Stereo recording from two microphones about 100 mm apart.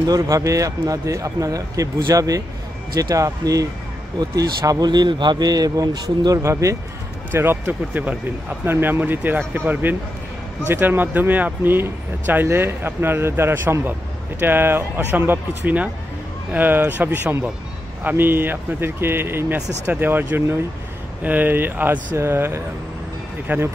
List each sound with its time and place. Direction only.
0.0 s speech: 35° right (ahead or behind); by 23.7 s 15° right (ahead or behind)